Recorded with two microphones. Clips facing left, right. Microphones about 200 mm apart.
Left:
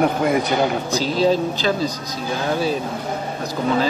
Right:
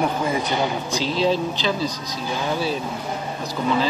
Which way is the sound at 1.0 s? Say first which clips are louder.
Left 3 dB; 40° left (ahead or behind).